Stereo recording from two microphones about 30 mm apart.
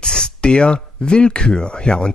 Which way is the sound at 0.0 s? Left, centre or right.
Left.